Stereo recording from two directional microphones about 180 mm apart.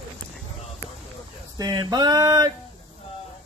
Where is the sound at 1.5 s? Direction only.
25° right (ahead or behind).